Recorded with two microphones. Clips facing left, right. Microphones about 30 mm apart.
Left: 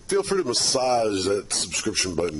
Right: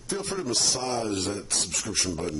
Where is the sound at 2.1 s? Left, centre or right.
Centre.